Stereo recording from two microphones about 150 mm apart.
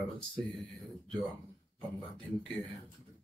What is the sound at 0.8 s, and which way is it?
Speech, centre (ahead or behind).